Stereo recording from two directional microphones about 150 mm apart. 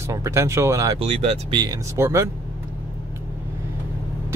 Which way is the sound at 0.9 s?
45° right (ahead or behind).